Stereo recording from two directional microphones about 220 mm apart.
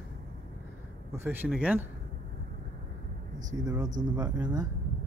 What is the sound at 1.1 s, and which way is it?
Speech, 10° right (ahead or behind).